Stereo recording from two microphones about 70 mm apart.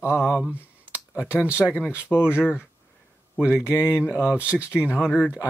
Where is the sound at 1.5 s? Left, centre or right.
Left.